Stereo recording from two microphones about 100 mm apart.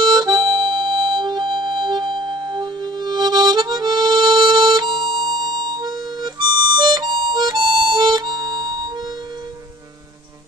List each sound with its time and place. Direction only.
0.0 s harmonica: 45° right (ahead or behind)